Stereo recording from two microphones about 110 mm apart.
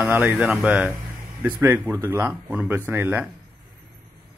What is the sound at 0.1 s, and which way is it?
Speech, 15° right (ahead or behind).